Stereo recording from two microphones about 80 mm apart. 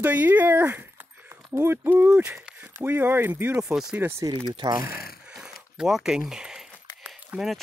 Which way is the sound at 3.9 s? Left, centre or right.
Right.